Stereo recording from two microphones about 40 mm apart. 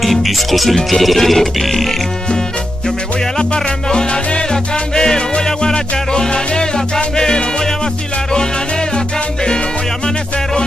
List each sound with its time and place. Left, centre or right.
0.0 s music: centre
3.3 s music: centre
8.9 s music: centre